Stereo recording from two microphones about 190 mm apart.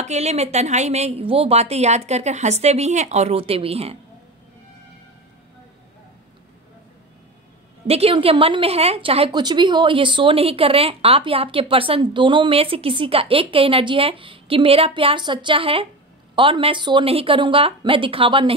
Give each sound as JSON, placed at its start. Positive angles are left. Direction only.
{"t": 0.0, "sound": "a woman's voice", "side_deg": -35}
{"t": 7.8, "sound": "a woman's voice", "side_deg": -30}